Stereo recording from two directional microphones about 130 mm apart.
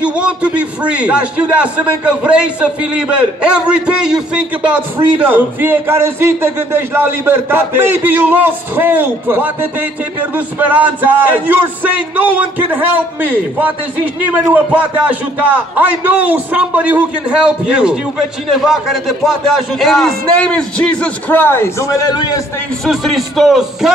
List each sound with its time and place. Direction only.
0.0 s a man's voice: 10° right (ahead or behind); by 22.1 s 20° left (ahead or behind)
22.1 s a man's voice: 35° left (ahead or behind)
22.8 s a man's voice: centre (ahead or behind)